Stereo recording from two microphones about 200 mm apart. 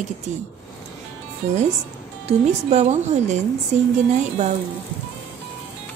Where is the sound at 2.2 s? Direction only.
35° right (ahead or behind).